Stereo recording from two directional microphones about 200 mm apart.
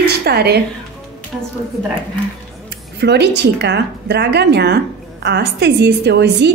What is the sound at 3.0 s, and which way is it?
A woman's voice, 60° right (ahead or behind).